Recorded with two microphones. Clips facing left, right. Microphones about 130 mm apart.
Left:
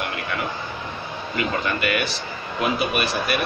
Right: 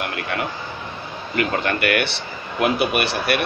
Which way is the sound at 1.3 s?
70° right (ahead or behind).